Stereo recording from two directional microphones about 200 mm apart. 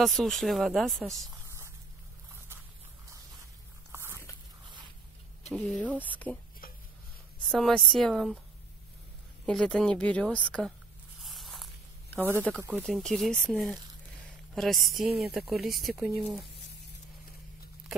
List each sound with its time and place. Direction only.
0.0 s speech: centre (ahead or behind)
3.9 s biting: 10° right (ahead or behind)
5.5 s speech: centre (ahead or behind)
6.0 s speech: 10° left (ahead or behind)
6.6 s a sound: 45° left (ahead or behind)
7.4 s speech: centre (ahead or behind)
9.5 s speech: 5° left (ahead or behind)
11.2 s zipper: centre (ahead or behind)
12.5 s speech: 10° right (ahead or behind)
12.8 s speech: centre (ahead or behind)